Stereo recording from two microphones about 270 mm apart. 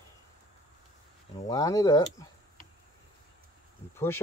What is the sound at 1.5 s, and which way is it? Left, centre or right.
Speech, centre.